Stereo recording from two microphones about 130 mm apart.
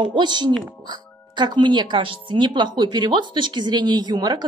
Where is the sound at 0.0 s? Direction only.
35° right (ahead or behind).